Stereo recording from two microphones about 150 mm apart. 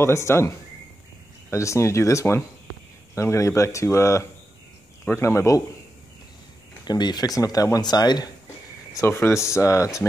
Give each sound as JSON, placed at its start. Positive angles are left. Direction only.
{"t": 0.0, "sound": "speech", "side_deg": 20}
{"t": 6.8, "sound": "speech", "side_deg": 30}
{"t": 8.9, "sound": "speech", "side_deg": 15}